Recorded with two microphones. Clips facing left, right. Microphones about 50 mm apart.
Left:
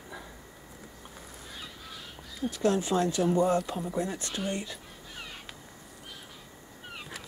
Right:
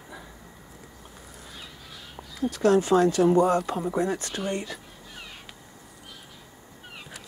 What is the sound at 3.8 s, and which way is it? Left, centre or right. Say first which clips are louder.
Speech: right 6 dB; right.